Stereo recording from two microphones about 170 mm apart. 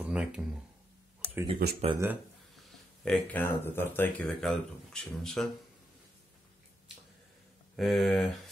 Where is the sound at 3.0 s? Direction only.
5° left (ahead or behind).